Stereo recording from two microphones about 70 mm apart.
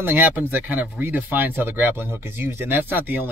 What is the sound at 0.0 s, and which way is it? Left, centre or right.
Speech, right.